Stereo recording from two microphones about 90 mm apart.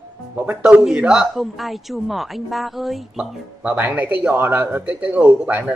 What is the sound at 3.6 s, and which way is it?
A man's voice, 20° right (ahead or behind).